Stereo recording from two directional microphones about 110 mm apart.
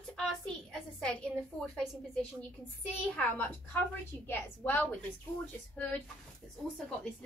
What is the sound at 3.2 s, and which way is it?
A woman's voice, 15° left (ahead or behind).